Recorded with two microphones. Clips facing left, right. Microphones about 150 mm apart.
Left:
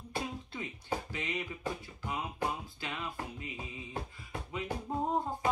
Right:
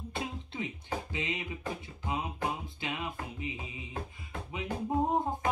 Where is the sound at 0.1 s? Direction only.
25° right (ahead or behind).